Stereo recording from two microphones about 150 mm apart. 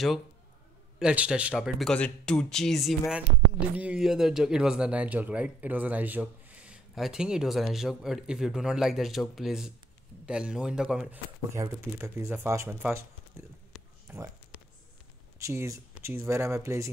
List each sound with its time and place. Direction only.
0.9 s speech: 5° right (ahead or behind)
11.5 s speech: 20° right (ahead or behind)
14.0 s a sound: 15° right (ahead or behind)
15.3 s speech: 20° right (ahead or behind)